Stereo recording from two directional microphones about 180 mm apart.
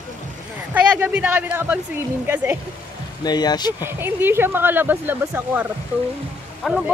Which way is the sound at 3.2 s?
20° left (ahead or behind).